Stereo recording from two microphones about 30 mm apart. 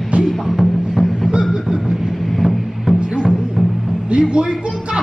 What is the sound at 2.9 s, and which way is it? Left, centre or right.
Music, right.